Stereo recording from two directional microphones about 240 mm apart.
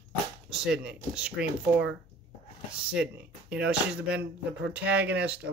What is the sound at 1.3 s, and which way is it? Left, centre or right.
Speech, right.